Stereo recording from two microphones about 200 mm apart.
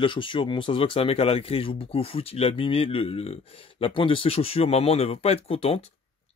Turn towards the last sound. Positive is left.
turn(degrees=30)  # may be behind; listen again after turning